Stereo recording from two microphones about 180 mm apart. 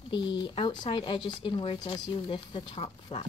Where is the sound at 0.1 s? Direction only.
25° left (ahead or behind).